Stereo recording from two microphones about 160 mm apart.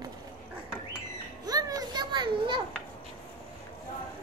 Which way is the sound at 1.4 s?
25° right (ahead or behind).